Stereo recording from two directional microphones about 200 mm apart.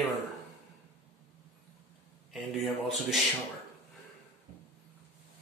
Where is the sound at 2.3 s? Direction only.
Centre (ahead or behind).